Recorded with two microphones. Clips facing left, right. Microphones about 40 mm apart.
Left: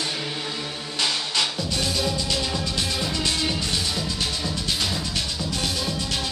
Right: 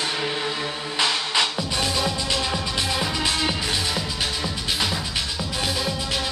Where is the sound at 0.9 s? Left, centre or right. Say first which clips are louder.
Right 3 dB; centre.